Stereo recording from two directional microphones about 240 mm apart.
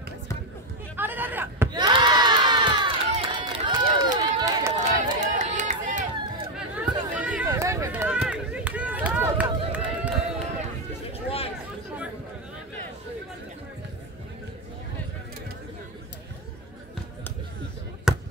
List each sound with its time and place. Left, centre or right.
0.9 s crowd: centre
5.4 s run: right
6.5 s run: centre
11.2 s a sound: left
18.1 s basketball bounce: centre